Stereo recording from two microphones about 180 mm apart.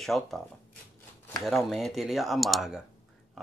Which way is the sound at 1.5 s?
Centre (ahead or behind).